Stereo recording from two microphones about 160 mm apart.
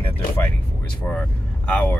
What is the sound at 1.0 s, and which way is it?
Speech, 10° left (ahead or behind).